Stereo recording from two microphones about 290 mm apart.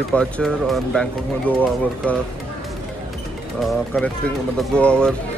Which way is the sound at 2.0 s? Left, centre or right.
Centre.